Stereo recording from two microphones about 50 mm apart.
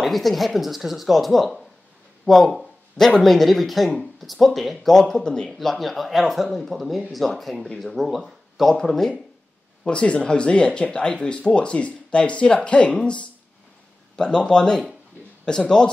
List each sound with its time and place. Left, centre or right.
0.0 s speech: centre
5.6 s speech: centre
9.8 s speech: left